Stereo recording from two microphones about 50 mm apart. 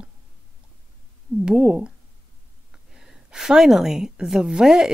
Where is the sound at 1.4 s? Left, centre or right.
Right.